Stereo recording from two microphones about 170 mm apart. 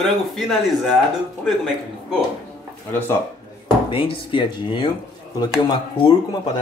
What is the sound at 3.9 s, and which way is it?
Speech, 30° left (ahead or behind).